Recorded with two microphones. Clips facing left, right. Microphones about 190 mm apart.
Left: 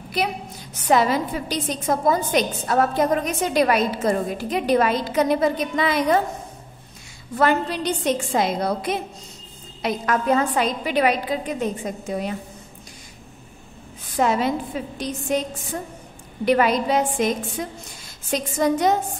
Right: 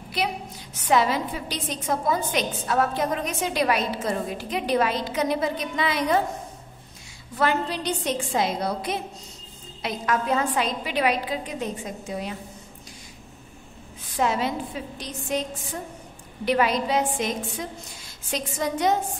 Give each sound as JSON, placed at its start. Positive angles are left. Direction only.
{"t": 0.8, "sound": "a woman's voice", "side_deg": 45}
{"t": 7.3, "sound": "a woman's voice", "side_deg": 50}
{"t": 14.1, "sound": "a woman's voice", "side_deg": 50}
{"t": 16.4, "sound": "a woman's voice", "side_deg": 50}
{"t": 18.3, "sound": "a woman's voice", "side_deg": 45}